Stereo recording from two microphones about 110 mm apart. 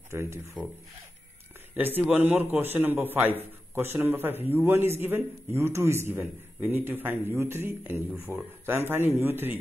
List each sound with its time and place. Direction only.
0.1 s speech: 25° right (ahead or behind)
2.0 s a man's voice: 15° right (ahead or behind)